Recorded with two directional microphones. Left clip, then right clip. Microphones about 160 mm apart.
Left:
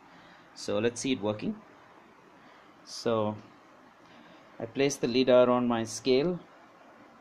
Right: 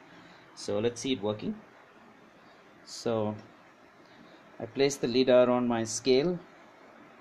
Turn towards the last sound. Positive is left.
turn(degrees=5)  # may be behind; listen again after turning